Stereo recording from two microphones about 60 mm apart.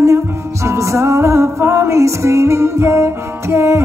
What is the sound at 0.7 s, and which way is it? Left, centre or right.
Music, right.